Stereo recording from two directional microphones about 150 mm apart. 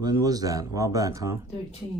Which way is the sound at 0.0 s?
25° right (ahead or behind).